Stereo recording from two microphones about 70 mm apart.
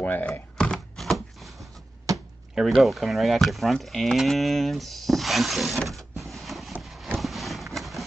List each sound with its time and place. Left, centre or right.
0.0 s speech: left
0.3 s a sound: centre
2.1 s chop: right
2.5 s speech: centre
5.9 s power windows: centre
6.8 s a sound: centre